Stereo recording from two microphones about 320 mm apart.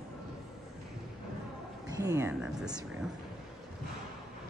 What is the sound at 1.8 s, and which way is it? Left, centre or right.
Speech, centre.